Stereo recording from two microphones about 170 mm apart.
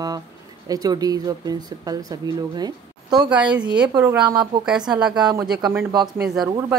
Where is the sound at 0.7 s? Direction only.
20° right (ahead or behind).